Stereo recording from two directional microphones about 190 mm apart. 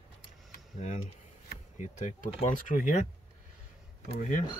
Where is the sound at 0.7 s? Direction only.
40° left (ahead or behind).